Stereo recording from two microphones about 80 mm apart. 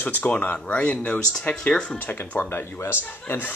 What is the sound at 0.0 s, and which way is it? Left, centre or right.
Speech, centre.